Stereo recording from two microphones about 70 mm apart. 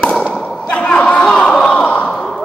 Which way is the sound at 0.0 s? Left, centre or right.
Centre.